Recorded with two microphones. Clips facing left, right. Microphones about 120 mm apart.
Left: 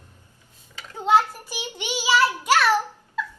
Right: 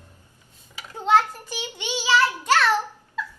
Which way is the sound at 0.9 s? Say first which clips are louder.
Even; 10° left (ahead or behind).